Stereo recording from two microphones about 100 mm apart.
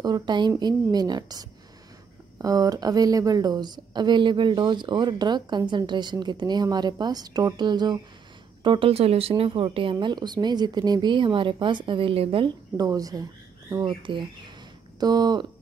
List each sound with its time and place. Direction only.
0.0 s a woman's voice: 45° right (ahead or behind)
8.6 s speech: 65° right (ahead or behind); by 9.3 s 85° right
9.4 s a woman's voice: 65° right (ahead or behind)
12.4 s a woman's voice: 40° right (ahead or behind)